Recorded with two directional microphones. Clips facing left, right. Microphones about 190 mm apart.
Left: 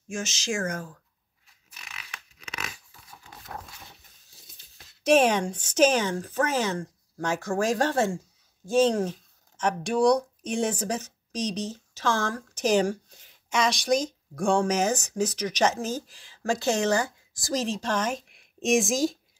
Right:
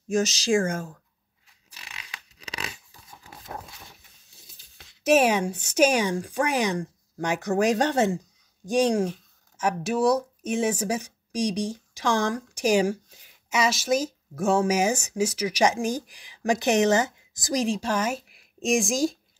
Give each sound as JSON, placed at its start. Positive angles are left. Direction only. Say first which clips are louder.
{"t": 0.1, "sound": "speech", "louder": "right 9 dB", "side_deg": -35}
{"t": 1.8, "sound": "a sound", "louder": "even", "side_deg": -30}
{"t": 4.4, "sound": "speech", "louder": "right 1 dB", "side_deg": 0}